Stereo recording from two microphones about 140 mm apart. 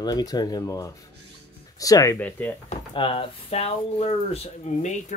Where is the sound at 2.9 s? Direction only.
40° left (ahead or behind).